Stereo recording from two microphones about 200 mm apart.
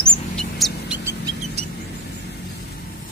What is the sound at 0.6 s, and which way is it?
Music, centre (ahead or behind).